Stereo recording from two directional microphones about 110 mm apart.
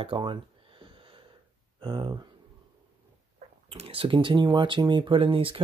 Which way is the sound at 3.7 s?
55° right (ahead or behind).